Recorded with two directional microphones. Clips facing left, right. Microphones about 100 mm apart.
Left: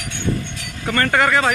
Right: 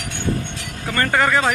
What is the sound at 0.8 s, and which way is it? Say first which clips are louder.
Speech: left 1 dB; 5° right (ahead or behind).